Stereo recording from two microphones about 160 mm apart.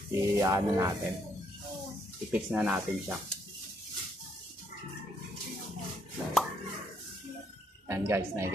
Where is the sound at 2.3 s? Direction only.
10° right (ahead or behind).